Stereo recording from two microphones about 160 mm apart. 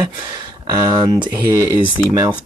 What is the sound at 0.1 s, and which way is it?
Speech, 30° right (ahead or behind).